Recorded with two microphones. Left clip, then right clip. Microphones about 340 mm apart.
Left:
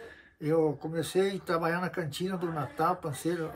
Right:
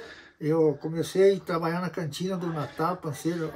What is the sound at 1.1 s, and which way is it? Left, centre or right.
Speech, centre.